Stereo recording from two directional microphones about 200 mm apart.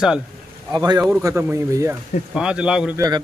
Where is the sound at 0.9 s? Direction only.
15° right (ahead or behind).